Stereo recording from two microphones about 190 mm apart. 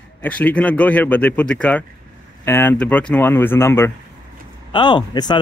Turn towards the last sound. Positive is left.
turn(degrees=25)  # may be behind; listen again after turning